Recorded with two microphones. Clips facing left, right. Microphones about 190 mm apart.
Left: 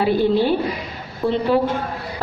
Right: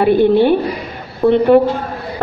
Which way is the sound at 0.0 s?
60° right (ahead or behind).